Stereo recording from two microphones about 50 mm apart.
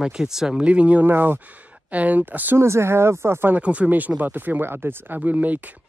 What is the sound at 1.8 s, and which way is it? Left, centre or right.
Speech, right.